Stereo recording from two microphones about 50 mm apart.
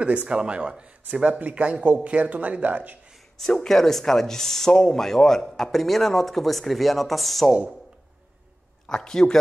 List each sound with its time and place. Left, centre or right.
0.0 s speech: right
3.3 s speech: centre
8.8 s speech: centre